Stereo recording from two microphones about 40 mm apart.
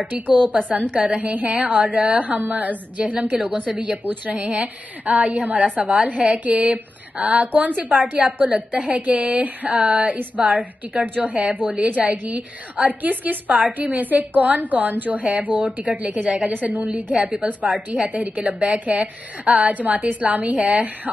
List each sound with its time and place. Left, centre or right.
0.1 s a woman's voice: right
4.0 s a woman's voice: right
4.4 s a woman's voice: right